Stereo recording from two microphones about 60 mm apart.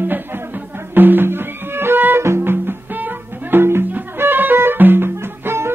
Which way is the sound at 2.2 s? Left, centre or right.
Right.